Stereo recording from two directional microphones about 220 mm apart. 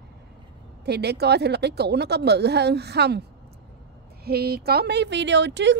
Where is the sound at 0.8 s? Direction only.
50° right (ahead or behind).